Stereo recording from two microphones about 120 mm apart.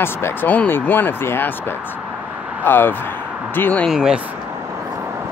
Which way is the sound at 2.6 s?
15° left (ahead or behind).